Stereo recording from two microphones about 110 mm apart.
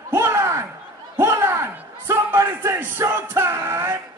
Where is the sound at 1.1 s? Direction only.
25° right (ahead or behind).